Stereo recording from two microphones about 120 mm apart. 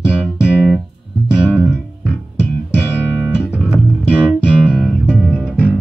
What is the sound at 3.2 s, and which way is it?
Music, 5° right (ahead or behind).